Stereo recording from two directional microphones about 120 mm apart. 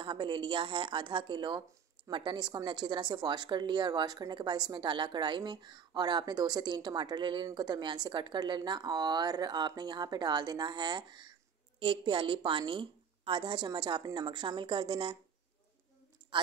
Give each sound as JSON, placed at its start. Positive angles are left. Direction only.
{"t": 0.0, "sound": "a woman's voice", "side_deg": -40}